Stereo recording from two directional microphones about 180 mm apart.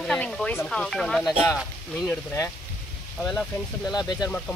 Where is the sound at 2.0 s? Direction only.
15° left (ahead or behind).